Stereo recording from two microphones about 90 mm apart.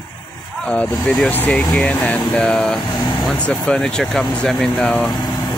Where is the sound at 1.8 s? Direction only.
15° left (ahead or behind).